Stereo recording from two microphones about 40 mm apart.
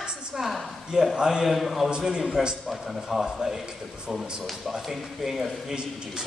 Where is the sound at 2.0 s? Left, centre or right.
Centre.